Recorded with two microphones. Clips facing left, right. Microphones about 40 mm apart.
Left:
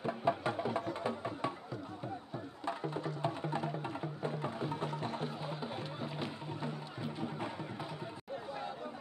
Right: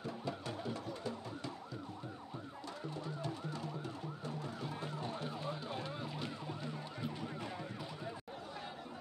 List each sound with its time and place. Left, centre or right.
0.0 s music: left
2.6 s music: left
5.4 s music: centre